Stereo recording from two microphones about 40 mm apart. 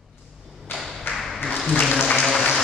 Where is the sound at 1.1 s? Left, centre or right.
Left.